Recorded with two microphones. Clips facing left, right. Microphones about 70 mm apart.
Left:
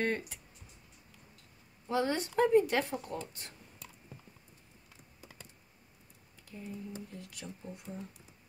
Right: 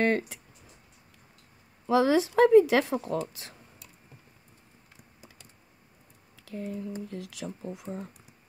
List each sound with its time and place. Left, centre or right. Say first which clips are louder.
0.0 s speech: right 8 dB; right
1.9 s speech: right 9 dB; right
6.4 s speech: right 8 dB; right